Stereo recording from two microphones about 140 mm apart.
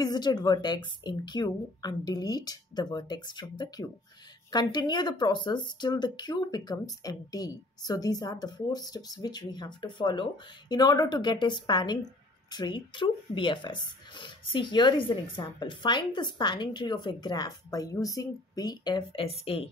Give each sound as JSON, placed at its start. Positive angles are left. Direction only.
{"t": 0.0, "sound": "a woman's voice", "side_deg": 30}